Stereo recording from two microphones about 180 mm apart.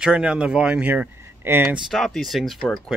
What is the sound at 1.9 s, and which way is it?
Speech, centre (ahead or behind).